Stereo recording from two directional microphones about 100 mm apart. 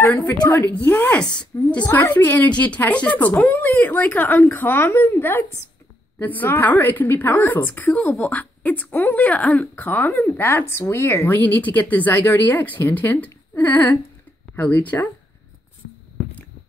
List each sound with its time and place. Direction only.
0.2 s a woman's voice: 35° left (ahead or behind)
0.8 s a woman's voice: 15° left (ahead or behind)